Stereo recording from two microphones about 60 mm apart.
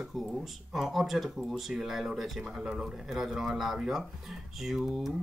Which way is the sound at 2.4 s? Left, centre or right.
Centre.